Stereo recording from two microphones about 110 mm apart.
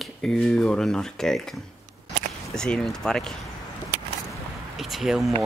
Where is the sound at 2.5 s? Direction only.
5° left (ahead or behind).